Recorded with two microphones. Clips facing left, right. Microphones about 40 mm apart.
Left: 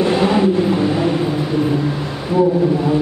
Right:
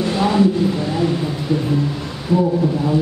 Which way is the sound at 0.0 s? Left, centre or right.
Left.